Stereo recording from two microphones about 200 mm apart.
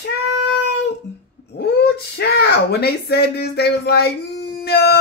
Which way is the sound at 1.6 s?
55° left (ahead or behind).